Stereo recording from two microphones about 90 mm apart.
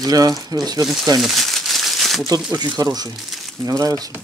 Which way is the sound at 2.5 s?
50° right (ahead or behind).